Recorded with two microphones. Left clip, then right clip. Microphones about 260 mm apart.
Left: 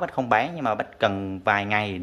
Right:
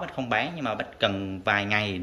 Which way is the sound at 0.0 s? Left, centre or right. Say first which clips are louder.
Left 5 dB; centre.